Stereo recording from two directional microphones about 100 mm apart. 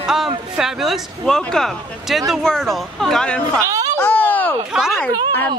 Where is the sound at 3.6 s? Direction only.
35° right (ahead or behind).